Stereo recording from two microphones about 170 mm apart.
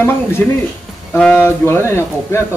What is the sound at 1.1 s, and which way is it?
Speech, centre (ahead or behind).